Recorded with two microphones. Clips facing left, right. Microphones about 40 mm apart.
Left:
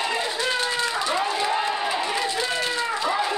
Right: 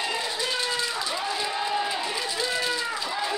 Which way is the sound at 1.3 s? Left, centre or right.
Left.